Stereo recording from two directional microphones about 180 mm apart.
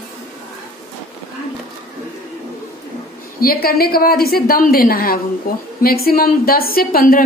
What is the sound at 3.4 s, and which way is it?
A woman's voice, 55° left (ahead or behind).